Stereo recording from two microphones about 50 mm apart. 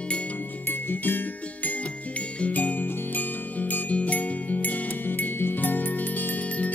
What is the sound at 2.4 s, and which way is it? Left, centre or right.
Music, left.